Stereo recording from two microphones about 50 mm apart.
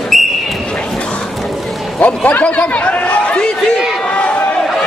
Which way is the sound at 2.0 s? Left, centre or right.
Left.